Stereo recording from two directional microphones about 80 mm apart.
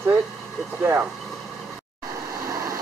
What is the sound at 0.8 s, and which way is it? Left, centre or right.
Speech, right.